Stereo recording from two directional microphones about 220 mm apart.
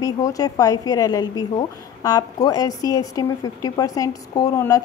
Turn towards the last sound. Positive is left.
turn(degrees=15)  # may be behind; listen again after turning